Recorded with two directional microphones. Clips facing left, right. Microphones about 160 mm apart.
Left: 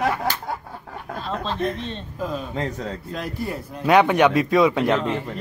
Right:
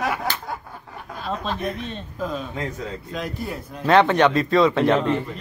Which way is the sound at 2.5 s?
35° left (ahead or behind).